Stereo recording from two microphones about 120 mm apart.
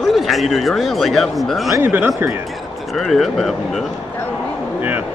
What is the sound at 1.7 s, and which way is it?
Speech, 20° right (ahead or behind).